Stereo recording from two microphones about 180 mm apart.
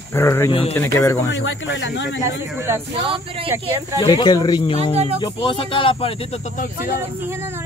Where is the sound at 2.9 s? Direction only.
30° right (ahead or behind).